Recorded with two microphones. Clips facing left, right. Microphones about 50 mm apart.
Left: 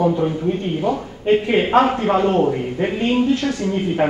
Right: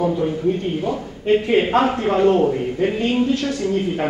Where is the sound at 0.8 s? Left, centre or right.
Centre.